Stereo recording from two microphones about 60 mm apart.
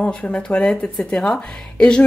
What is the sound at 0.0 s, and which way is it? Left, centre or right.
A woman's voice, left.